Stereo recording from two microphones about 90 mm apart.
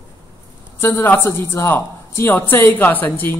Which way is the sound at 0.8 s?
25° left (ahead or behind).